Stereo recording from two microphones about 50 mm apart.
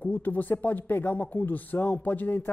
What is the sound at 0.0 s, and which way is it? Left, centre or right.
A man's voice, left.